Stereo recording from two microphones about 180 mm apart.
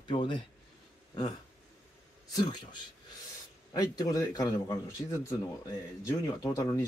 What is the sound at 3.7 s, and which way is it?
A man's voice, 20° left (ahead or behind).